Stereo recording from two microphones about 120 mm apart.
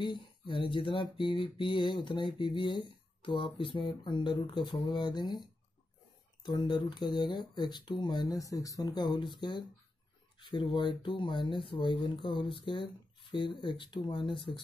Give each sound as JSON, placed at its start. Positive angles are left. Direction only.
{"t": 0.0, "sound": "speech", "side_deg": 40}